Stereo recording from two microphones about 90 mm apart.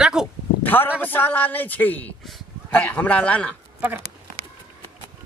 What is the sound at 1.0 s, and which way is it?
A man's voice, 20° left (ahead or behind).